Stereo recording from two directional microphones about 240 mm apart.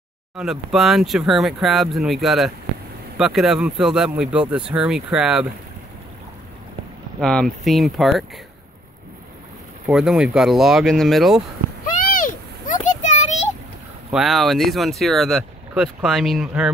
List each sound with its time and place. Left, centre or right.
0.4 s speech: centre
7.2 s speech: centre
9.8 s speech: centre
11.8 s a sound: left
14.1 s speech: centre